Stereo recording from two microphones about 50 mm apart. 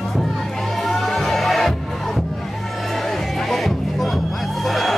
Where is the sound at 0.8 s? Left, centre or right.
Centre.